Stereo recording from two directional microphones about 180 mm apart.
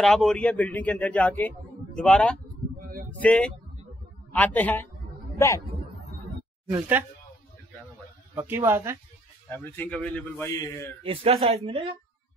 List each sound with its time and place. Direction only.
0.0 s a man's voice: centre (ahead or behind)
6.7 s speech: 10° right (ahead or behind)
8.4 s speech: 15° right (ahead or behind)
9.6 s speech: 10° left (ahead or behind)
11.1 s a woman's voice: 30° right (ahead or behind)